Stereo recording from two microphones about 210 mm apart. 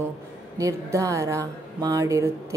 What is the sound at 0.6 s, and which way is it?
Speech, 15° right (ahead or behind).